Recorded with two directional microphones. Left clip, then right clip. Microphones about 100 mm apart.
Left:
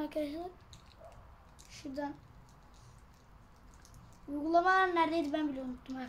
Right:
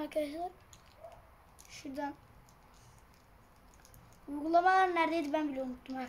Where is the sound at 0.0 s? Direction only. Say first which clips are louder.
Right 2 dB; 5° right (ahead or behind).